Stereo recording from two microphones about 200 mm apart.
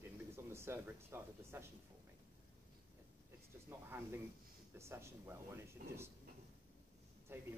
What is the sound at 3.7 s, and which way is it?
Speech, 10° right (ahead or behind).